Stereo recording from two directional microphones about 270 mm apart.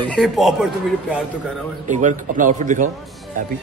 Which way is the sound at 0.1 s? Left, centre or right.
Centre.